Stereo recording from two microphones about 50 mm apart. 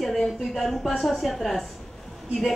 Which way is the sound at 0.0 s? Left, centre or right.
Centre.